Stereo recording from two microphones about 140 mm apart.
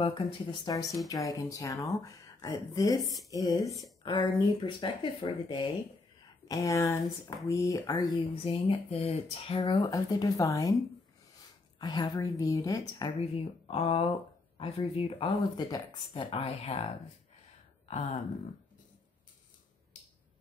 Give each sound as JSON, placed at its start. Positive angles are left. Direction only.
{"t": 0.0, "sound": "speech", "side_deg": 40}
{"t": 6.4, "sound": "speech", "side_deg": 25}
{"t": 11.8, "sound": "speech", "side_deg": 30}
{"t": 13.2, "sound": "speech", "side_deg": 45}